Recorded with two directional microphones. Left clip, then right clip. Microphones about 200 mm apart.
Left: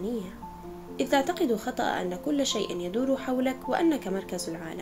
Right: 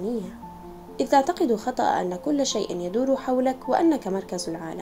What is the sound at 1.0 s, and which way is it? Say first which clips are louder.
A woman's voice: right 5 dB; 15° right (ahead or behind).